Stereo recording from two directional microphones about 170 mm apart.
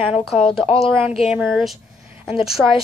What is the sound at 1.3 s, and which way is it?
Speech, 5° right (ahead or behind).